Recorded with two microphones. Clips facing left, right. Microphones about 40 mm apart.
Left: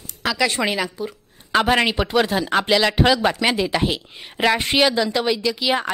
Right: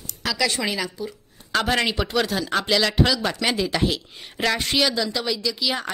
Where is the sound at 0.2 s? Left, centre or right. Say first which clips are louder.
Left 3 dB; left.